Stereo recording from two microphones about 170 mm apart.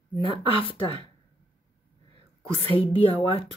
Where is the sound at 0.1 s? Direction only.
30° left (ahead or behind).